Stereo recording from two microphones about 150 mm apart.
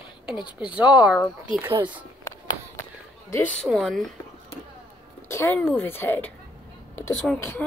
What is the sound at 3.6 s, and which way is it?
Speech, centre (ahead or behind).